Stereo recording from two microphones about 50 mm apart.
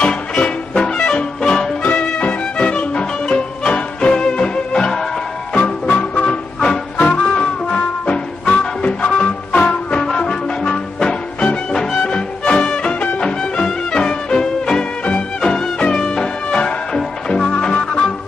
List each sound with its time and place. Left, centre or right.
0.0 s music: centre
1.9 s music: left
5.9 s music: left
6.6 s music: centre